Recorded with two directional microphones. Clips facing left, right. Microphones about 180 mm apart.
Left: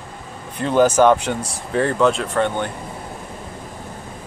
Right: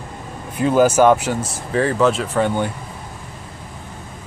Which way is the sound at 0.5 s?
5° right (ahead or behind).